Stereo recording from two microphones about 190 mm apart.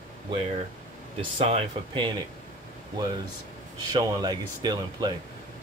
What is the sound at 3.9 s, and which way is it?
Speech, 20° right (ahead or behind).